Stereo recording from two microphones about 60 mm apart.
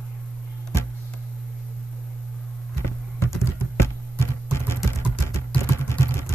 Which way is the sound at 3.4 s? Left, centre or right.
Left.